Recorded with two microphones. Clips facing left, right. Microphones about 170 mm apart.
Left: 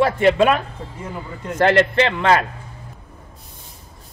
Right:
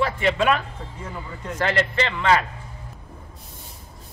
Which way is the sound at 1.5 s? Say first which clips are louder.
Left 8 dB; 60° left (ahead or behind).